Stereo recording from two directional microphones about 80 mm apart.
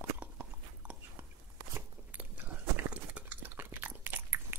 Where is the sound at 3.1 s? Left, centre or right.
Right.